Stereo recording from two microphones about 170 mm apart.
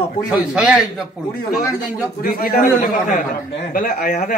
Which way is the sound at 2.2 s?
60° left (ahead or behind).